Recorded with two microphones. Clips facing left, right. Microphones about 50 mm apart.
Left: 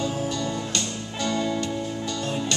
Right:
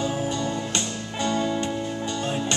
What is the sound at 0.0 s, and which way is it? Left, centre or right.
Music, right.